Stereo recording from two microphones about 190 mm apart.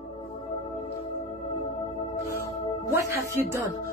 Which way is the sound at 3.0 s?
15° right (ahead or behind).